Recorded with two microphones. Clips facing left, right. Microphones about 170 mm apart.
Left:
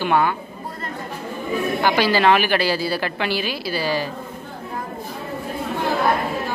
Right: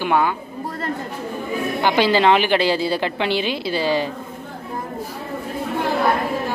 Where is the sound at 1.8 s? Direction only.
20° right (ahead or behind).